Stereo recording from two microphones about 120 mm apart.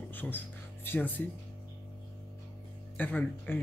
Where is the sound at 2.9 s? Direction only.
15° left (ahead or behind).